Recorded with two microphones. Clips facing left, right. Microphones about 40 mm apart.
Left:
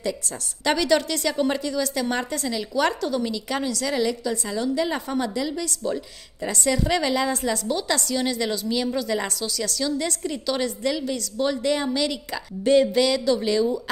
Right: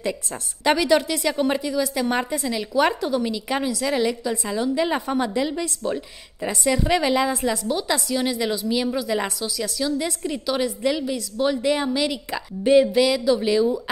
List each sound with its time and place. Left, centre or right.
0.7 s a woman's voice: centre; by 5.9 s right
6.4 s a woman's voice: centre